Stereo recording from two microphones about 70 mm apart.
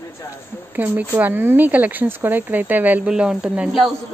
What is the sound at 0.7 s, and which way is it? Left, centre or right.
Speech, right.